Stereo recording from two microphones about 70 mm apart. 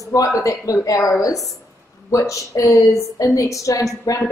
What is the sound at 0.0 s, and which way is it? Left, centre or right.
A woman's voice, left.